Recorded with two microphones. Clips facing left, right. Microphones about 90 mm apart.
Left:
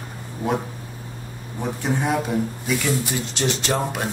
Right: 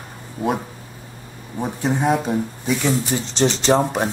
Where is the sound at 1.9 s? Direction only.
10° right (ahead or behind).